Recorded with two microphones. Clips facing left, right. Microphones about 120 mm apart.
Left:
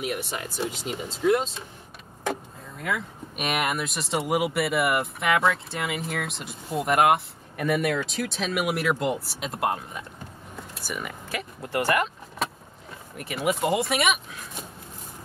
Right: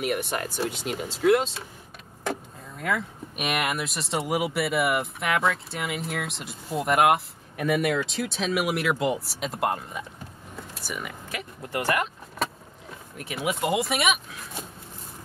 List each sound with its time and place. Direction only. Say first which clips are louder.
0.1 s speech: right 3 dB; 55° right (ahead or behind)
0.7 s speech: right 1 dB; centre (ahead or behind)
2.8 s speech: right 2 dB; centre (ahead or behind)